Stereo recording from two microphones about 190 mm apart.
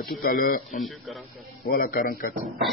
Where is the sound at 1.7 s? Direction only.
50° left (ahead or behind).